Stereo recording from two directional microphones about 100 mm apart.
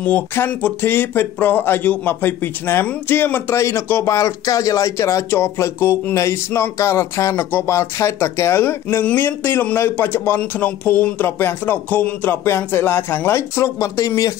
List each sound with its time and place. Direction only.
0.0 s speech: 20° left (ahead or behind)
8.8 s speech: 15° left (ahead or behind); by 14.3 s 35° left (ahead or behind)